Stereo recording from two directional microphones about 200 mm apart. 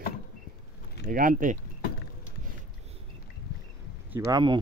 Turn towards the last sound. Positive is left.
turn(degrees=-20)  # may be behind; listen again after turning